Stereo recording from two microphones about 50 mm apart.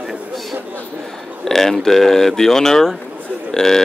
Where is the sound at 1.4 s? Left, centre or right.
Centre.